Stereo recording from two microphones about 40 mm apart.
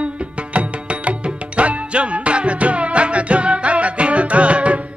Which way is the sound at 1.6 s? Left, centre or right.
Right.